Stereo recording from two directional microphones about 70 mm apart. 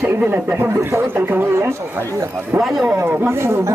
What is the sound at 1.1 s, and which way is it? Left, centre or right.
Speech, right.